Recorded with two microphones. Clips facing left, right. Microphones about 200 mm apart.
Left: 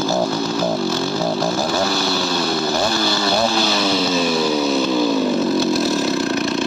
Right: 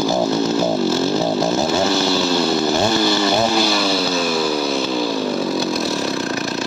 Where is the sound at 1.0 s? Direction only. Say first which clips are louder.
Right 3 dB; 20° right (ahead or behind).